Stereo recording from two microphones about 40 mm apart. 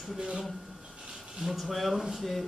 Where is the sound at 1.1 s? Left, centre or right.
Centre.